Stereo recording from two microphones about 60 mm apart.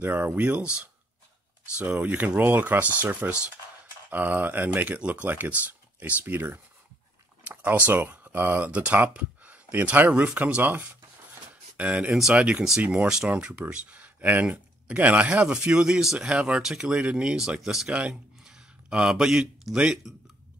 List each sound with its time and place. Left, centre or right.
0.0 s speech: right
1.8 s speech: right
7.4 s a sound: right
7.9 s speech: right
11.7 s speech: right
17.6 s speech: centre
17.9 s a sound: centre
20.1 s speech: centre